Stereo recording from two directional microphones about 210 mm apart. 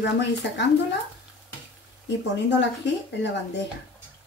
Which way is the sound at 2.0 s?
55° left (ahead or behind).